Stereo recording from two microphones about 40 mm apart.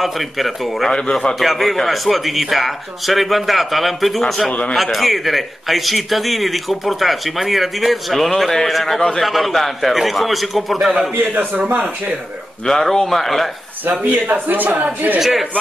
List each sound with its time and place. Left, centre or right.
0.0 s speech: centre
0.9 s a man's voice: centre
1.4 s speech: centre
4.5 s a man's voice: left
4.9 s speech: centre
11.3 s speech: right
12.6 s speech: centre
13.8 s speech: right
15.1 s a man's voice: centre